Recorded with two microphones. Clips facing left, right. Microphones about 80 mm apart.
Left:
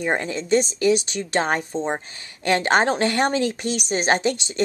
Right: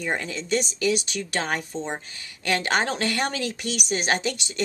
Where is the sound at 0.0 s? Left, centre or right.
Left.